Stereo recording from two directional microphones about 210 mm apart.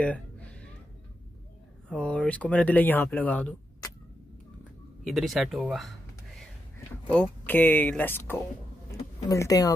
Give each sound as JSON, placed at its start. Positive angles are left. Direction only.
{"t": 0.0, "sound": "a sound", "side_deg": 5}
{"t": 1.9, "sound": "speech", "side_deg": 5}
{"t": 5.0, "sound": "speech", "side_deg": 0}
{"t": 7.1, "sound": "speech", "side_deg": 5}